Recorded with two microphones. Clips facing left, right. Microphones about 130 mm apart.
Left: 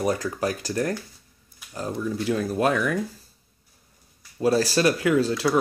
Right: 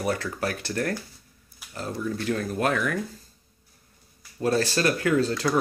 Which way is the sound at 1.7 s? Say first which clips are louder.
Left 2 dB; 15° left (ahead or behind).